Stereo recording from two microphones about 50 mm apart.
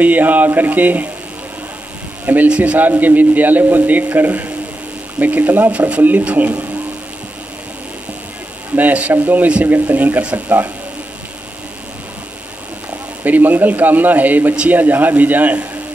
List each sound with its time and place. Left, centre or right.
0.0 s a man's voice: right
2.4 s speech: right
2.9 s a man's voice: right
8.7 s a man's voice: right
13.2 s a man's voice: right